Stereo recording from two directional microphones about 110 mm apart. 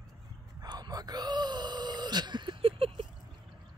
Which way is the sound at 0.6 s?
40° right (ahead or behind).